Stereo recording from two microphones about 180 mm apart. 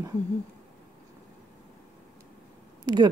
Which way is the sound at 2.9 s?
25° right (ahead or behind).